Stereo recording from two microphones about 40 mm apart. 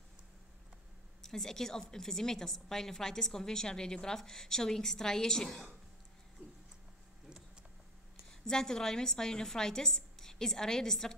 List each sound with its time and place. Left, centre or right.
1.2 s a woman's voice: centre
8.3 s a woman's voice: centre